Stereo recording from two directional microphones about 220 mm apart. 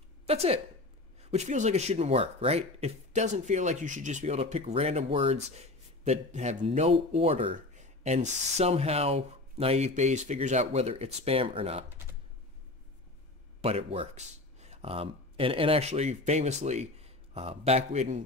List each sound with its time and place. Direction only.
0.3 s speech: 25° right (ahead or behind)
13.6 s speech: 25° right (ahead or behind)